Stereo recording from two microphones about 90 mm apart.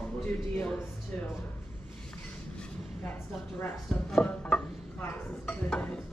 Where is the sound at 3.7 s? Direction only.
5° left (ahead or behind).